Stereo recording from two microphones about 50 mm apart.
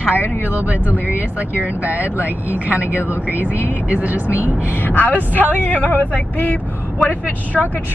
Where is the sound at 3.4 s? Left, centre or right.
Left.